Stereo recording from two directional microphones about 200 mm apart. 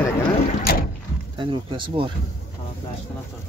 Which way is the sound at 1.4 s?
25° right (ahead or behind).